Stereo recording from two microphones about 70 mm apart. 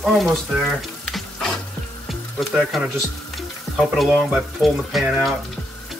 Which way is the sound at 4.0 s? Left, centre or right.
Centre.